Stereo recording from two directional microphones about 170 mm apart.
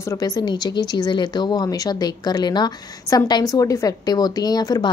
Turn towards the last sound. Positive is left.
turn(degrees=25)  # may be behind; listen again after turning